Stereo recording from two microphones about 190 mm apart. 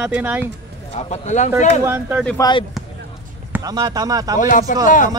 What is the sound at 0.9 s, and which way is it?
Speech, 35° left (ahead or behind).